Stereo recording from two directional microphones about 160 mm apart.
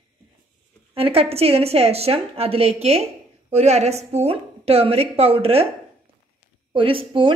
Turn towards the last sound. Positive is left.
turn(degrees=-35)  # may be behind; listen again after turning